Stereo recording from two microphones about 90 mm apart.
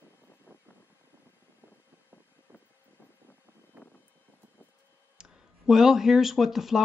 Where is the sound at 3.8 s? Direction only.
20° right (ahead or behind).